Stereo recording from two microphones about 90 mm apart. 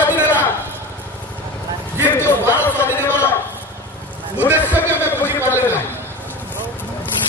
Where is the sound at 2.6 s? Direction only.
25° left (ahead or behind).